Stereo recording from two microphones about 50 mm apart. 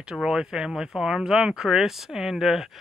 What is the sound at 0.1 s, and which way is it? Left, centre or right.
Speech, centre.